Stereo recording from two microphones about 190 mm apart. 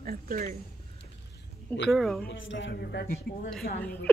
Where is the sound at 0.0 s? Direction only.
50° right (ahead or behind).